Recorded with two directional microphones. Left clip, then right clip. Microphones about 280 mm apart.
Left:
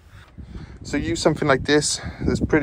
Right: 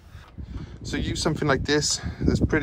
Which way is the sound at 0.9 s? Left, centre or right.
Centre.